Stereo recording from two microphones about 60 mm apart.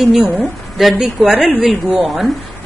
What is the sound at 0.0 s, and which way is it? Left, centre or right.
A woman's voice, centre.